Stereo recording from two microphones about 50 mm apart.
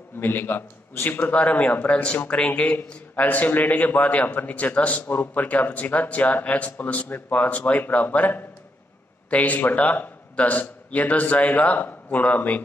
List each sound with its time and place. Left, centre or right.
0.2 s a man's voice: left
1.3 s a man's voice: left